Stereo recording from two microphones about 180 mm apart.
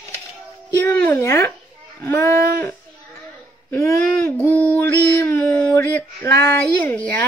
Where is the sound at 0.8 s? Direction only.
10° left (ahead or behind).